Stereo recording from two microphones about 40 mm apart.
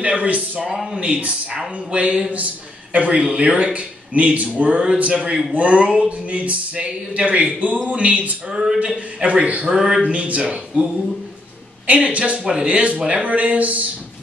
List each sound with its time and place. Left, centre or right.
0.0 s speech: right
0.9 s a man's voice: right
8.5 s speech: centre
8.7 s speech: right
9.8 s speech: centre
10.0 s speech: right
11.9 s speech: right
12.6 s speech: right